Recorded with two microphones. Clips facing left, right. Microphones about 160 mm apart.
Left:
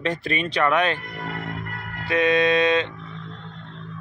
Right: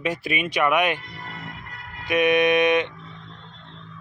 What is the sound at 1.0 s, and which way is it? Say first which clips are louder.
Music: left 6 dB; 55° left (ahead or behind).